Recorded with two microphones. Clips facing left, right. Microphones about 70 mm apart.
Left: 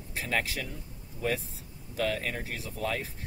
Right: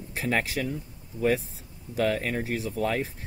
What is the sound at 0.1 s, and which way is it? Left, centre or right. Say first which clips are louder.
Speech: right 4 dB; right.